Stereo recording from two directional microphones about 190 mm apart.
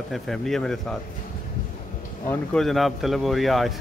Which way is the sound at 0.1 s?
Centre (ahead or behind).